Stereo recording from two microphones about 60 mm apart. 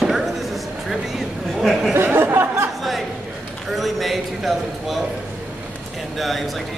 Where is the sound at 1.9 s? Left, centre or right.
Right.